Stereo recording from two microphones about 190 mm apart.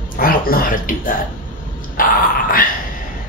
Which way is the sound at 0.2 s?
50° left (ahead or behind).